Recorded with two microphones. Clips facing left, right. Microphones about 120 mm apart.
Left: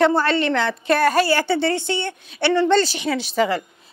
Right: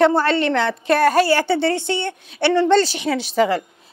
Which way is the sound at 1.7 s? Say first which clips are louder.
Right 1 dB; 60° right (ahead or behind).